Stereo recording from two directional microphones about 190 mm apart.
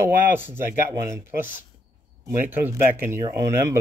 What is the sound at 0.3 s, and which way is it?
Speech, 10° right (ahead or behind).